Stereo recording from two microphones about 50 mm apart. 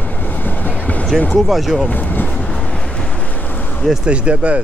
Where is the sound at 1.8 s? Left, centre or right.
Left.